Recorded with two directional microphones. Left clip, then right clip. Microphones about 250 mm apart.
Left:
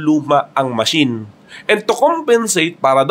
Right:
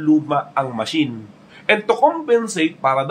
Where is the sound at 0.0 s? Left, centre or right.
Left.